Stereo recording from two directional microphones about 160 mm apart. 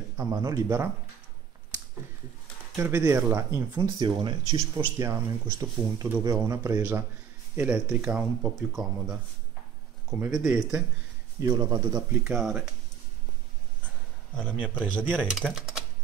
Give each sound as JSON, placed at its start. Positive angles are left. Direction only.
{"t": 0.2, "sound": "speech", "side_deg": -20}
{"t": 2.7, "sound": "speech", "side_deg": -15}
{"t": 10.2, "sound": "speech", "side_deg": -5}
{"t": 11.3, "sound": "speech", "side_deg": -20}
{"t": 14.3, "sound": "a man's voice", "side_deg": 5}
{"t": 15.0, "sound": "speech", "side_deg": -10}